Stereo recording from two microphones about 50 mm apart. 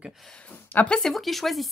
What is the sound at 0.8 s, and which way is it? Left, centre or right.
Speech, left.